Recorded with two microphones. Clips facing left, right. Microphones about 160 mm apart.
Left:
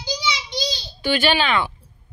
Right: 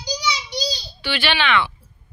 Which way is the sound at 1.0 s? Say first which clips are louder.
Left 3 dB; 45° left (ahead or behind).